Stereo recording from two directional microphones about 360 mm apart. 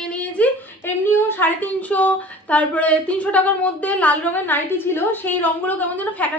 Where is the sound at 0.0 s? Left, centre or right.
Centre.